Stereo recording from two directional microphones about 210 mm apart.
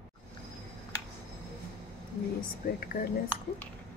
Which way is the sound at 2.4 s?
45° left (ahead or behind).